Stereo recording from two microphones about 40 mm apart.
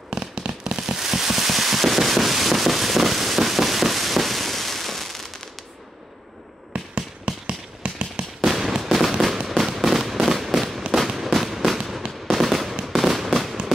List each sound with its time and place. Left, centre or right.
0.1 s fireworks: centre
6.7 s a sound: right
8.4 s fireworks: centre